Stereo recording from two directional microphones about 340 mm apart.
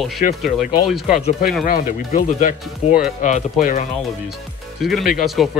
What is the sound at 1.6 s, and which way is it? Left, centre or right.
Speech, left.